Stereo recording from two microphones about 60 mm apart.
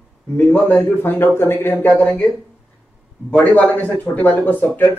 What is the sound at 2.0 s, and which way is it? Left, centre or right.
Speech, left.